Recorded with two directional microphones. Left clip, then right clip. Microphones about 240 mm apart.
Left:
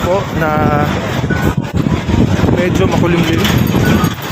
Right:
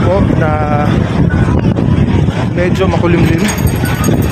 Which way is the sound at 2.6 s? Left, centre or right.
Centre.